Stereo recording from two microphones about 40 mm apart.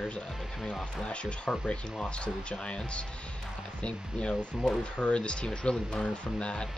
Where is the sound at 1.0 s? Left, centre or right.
Left.